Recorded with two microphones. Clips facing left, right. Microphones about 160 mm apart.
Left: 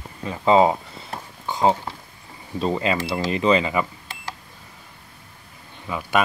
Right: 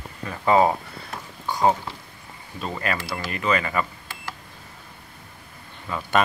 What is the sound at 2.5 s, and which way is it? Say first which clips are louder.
Speech: left 6 dB; 25° left (ahead or behind).